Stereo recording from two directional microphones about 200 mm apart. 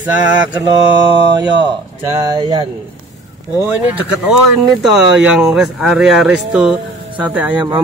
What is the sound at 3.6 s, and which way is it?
Speech, 10° right (ahead or behind).